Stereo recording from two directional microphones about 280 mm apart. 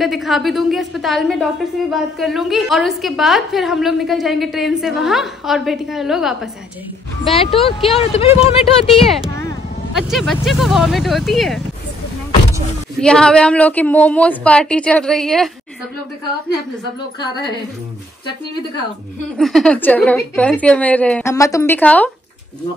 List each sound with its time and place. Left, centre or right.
0.0 s a woman's voice: centre
7.5 s speech: centre
8.8 s a woman's voice: centre
13.0 s a woman's voice: centre
19.3 s a woman's voice: centre